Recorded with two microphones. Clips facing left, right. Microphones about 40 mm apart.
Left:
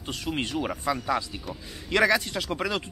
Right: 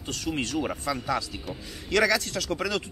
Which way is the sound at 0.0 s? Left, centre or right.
Centre.